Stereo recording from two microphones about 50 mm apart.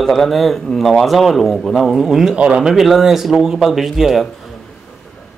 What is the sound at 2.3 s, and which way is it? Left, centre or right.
Speech, right.